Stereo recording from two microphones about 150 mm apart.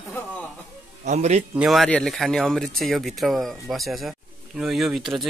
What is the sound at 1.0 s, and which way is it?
Speech, 50° right (ahead or behind).